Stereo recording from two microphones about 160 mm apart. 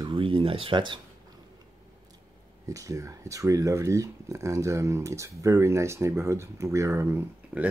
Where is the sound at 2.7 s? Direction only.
20° right (ahead or behind).